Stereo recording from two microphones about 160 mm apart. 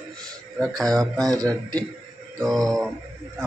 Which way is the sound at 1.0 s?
25° right (ahead or behind).